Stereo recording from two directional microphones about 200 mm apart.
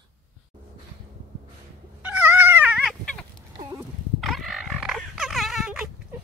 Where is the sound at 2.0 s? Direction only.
5° right (ahead or behind).